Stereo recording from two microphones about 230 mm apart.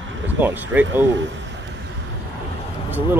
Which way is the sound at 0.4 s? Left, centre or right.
Centre.